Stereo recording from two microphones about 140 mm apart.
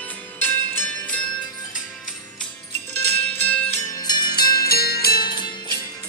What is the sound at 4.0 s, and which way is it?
Music, 30° left (ahead or behind).